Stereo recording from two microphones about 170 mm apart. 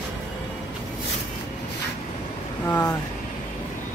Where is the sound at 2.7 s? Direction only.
10° left (ahead or behind).